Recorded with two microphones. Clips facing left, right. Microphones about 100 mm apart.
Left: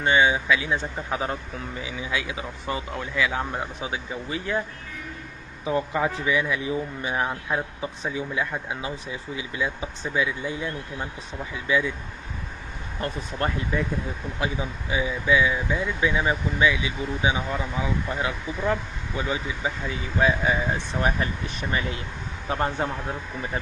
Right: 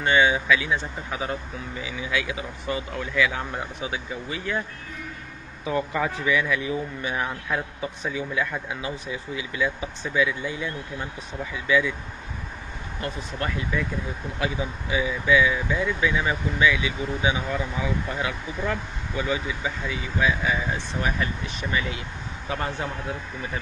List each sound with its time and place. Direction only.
0.0 s a man's voice: 25° left (ahead or behind)
5.7 s a man's voice: 20° left (ahead or behind)
13.0 s a man's voice: 35° left (ahead or behind)
22.5 s speech: 35° left (ahead or behind)